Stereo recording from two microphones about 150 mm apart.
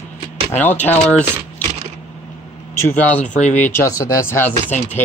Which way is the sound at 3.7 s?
20° left (ahead or behind).